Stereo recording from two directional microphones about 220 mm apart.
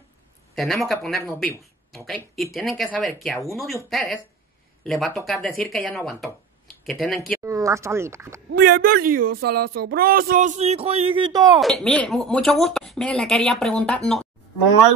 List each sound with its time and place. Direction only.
0.6 s speech: centre (ahead or behind)
7.4 s speech: 15° right (ahead or behind)
8.7 s speech: 40° right (ahead or behind); by 11.6 s 20° right (ahead or behind)
11.6 s speech: 5° left (ahead or behind)